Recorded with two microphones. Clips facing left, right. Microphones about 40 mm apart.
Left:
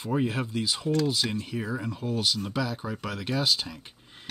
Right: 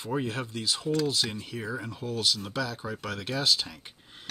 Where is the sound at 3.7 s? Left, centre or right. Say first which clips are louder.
Left 2 dB; centre.